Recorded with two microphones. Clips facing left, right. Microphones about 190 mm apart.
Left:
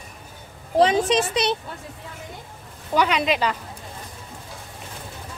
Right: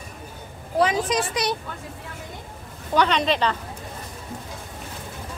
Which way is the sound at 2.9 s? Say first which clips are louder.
Even; 10° left (ahead or behind).